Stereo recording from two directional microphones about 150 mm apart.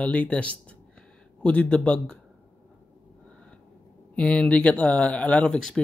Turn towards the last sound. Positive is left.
turn(degrees=5)  # may be behind; listen again after turning